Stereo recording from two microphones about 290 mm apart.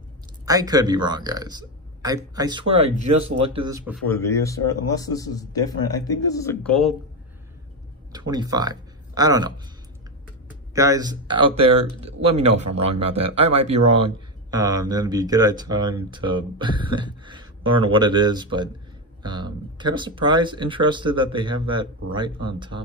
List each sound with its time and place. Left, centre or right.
0.5 s speech: centre
4.0 s speech: centre
8.1 s speech: centre
10.7 s speech: centre